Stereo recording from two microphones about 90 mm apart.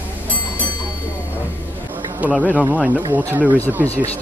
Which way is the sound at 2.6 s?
20° right (ahead or behind).